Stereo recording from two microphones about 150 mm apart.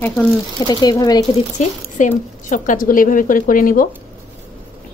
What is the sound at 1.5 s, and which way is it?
A woman's voice, 55° left (ahead or behind).